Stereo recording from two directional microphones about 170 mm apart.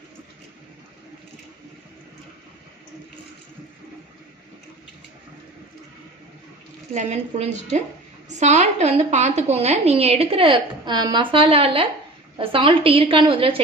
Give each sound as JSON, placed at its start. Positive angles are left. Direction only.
{"t": 6.9, "sound": "a woman's voice", "side_deg": -40}